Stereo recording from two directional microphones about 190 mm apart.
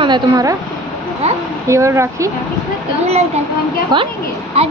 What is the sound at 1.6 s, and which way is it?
Speech, 15° right (ahead or behind).